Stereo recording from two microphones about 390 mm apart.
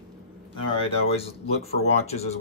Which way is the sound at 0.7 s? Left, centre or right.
Centre.